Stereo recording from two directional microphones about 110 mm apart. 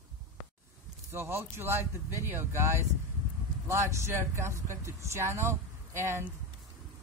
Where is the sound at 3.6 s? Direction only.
25° right (ahead or behind).